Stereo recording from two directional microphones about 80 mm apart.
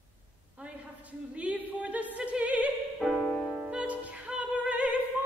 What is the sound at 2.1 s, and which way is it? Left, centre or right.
Opera, centre.